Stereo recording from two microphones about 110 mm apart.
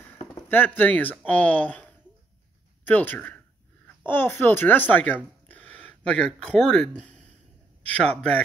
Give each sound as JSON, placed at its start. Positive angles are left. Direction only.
{"t": 0.5, "sound": "a child's voice", "side_deg": 15}